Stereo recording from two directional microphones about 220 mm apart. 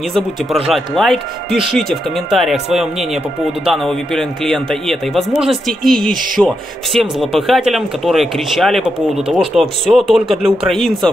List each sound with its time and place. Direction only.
0.7 s a man's voice: centre (ahead or behind)